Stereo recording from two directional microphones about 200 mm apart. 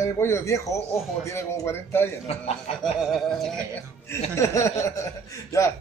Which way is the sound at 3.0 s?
Centre (ahead or behind).